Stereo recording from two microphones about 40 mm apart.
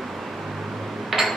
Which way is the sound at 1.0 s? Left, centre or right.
Centre.